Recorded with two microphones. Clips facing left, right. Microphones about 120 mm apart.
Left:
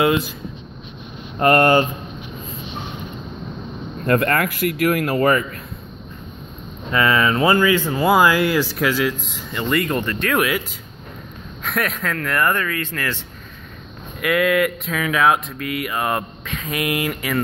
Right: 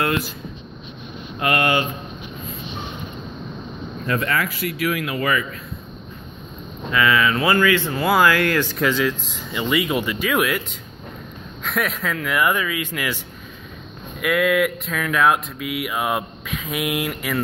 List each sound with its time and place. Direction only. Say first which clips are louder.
0.0 s speech: left 5 dB; 20° left (ahead or behind)
1.4 s speech: left 6 dB; 40° left (ahead or behind)
4.0 s speech: left 5 dB; 50° left (ahead or behind)
6.9 s speech: left 1 dB; 35° left (ahead or behind)
7.5 s speech: left 1 dB; 15° left (ahead or behind); by 10.6 s centre (ahead or behind)
11.6 s speech: left 1 dB; centre (ahead or behind)
14.2 s speech: left 1 dB; centre (ahead or behind)